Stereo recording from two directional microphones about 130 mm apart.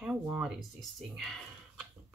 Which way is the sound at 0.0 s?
5° right (ahead or behind).